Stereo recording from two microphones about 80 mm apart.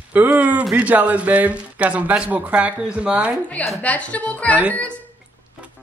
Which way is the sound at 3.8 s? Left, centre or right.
Centre.